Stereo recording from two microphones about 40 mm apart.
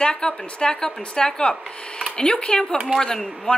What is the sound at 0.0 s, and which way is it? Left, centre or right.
A woman's voice, left.